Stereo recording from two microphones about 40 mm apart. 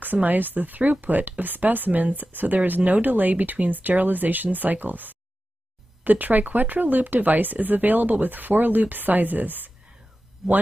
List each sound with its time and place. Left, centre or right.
0.0 s speech: right
10.4 s speech: centre